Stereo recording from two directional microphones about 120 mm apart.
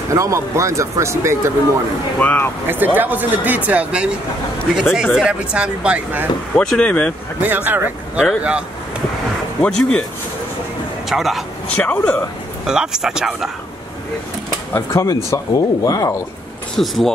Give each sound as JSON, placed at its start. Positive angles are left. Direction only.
{"t": 0.1, "sound": "speech", "side_deg": -25}
{"t": 2.1, "sound": "speech", "side_deg": 15}
{"t": 2.6, "sound": "speech", "side_deg": -15}
{"t": 6.5, "sound": "speech", "side_deg": 10}
{"t": 7.4, "sound": "speech", "side_deg": -15}
{"t": 9.6, "sound": "speech", "side_deg": 10}
{"t": 11.1, "sound": "speech", "side_deg": 0}
{"t": 11.7, "sound": "speech", "side_deg": 15}
{"t": 12.6, "sound": "speech", "side_deg": -5}
{"t": 14.7, "sound": "speech", "side_deg": 25}
{"t": 16.7, "sound": "speech", "side_deg": 0}